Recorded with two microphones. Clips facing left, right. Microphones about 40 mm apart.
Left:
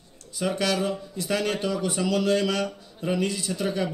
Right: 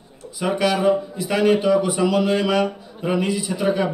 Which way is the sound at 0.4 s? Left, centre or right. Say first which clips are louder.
Right 5 dB; centre.